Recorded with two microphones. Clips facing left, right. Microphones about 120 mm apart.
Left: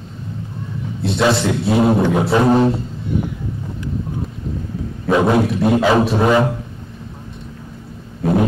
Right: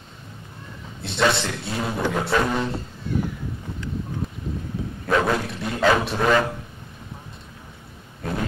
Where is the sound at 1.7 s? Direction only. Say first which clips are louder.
Left 15 dB; 50° left (ahead or behind).